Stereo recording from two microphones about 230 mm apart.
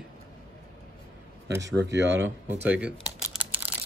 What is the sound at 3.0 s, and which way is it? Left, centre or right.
Computer keyboard, centre.